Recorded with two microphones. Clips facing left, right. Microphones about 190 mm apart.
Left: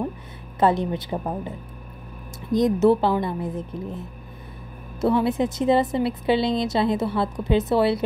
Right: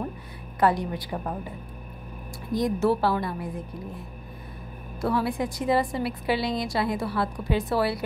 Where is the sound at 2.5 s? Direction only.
20° left (ahead or behind).